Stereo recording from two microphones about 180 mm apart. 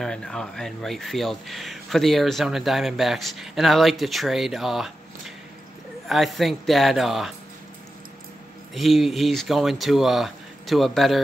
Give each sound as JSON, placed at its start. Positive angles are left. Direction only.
{"t": 0.0, "sound": "speech", "side_deg": 5}
{"t": 8.7, "sound": "speech", "side_deg": 0}